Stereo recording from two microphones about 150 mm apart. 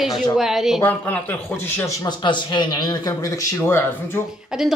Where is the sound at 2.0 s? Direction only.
30° left (ahead or behind).